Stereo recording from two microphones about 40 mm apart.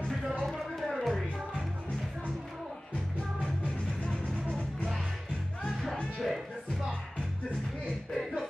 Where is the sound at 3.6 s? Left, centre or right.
Left.